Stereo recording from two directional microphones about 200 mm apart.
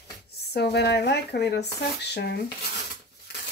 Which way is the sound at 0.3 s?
55° left (ahead or behind).